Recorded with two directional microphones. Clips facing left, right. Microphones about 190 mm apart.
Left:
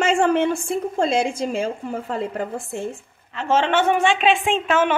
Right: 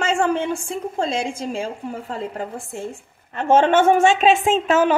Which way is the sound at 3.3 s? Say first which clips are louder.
Right 4 dB; 55° right (ahead or behind).